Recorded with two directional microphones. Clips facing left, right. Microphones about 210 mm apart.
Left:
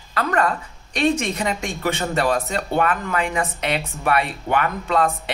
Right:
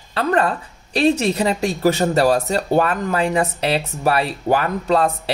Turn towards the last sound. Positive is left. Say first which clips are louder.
# right 3 dB
turn(degrees=-35)  # may be behind; listen again after turning